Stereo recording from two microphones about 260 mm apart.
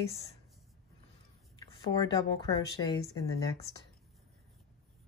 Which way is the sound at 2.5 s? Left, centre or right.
Centre.